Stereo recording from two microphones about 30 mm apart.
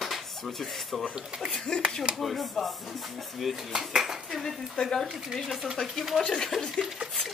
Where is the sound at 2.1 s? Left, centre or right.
Centre.